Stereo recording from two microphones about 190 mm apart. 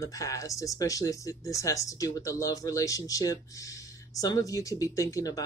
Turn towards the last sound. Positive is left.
turn(degrees=20)  # may be behind; listen again after turning